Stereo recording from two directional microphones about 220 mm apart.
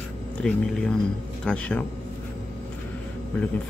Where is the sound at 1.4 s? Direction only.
5° left (ahead or behind).